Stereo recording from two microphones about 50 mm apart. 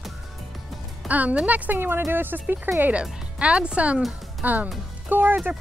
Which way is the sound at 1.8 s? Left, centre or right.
Right.